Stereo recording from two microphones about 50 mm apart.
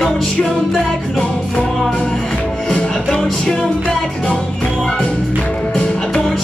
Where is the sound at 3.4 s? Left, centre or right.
Centre.